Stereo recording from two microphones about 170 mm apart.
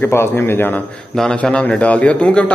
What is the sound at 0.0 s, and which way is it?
A man's voice, 15° left (ahead or behind).